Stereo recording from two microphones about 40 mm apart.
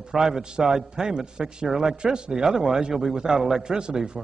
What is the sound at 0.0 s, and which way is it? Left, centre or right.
A man's voice, centre.